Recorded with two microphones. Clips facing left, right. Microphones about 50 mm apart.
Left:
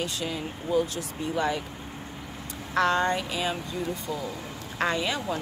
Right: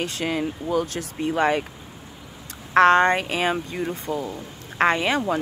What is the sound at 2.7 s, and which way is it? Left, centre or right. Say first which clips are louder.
Speech: right 8 dB; right.